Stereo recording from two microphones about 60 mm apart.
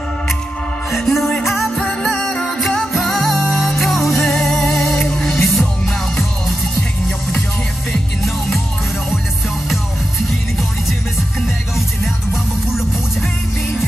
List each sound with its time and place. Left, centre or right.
0.9 s music: centre
1.9 s music: centre